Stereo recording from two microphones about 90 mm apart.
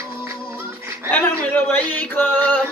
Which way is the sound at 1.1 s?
20° left (ahead or behind).